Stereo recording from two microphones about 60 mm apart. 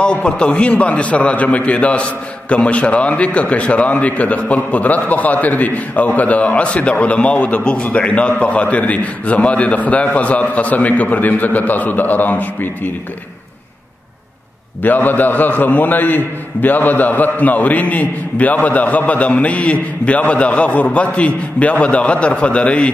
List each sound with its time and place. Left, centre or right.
0.0 s a man's voice: centre
14.8 s a man's voice: left